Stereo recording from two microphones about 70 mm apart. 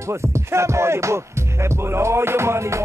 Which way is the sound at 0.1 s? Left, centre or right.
Right.